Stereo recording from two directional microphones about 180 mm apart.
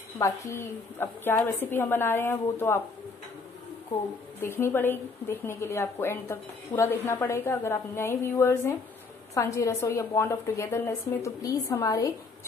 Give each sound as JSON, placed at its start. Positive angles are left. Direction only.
{"t": 0.2, "sound": "a woman's voice", "side_deg": 15}
{"t": 4.4, "sound": "a woman's voice", "side_deg": 15}